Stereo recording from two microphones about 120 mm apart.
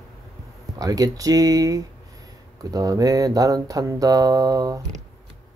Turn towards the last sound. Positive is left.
turn(degrees=-35)  # may be behind; listen again after turning